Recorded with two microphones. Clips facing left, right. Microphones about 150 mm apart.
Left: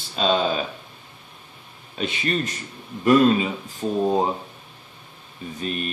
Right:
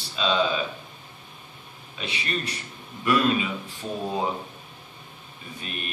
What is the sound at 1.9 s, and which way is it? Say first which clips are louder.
Speech: left 6 dB; 45° left (ahead or behind).